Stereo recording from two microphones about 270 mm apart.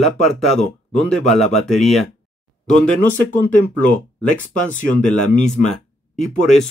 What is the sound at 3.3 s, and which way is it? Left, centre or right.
Speech, left.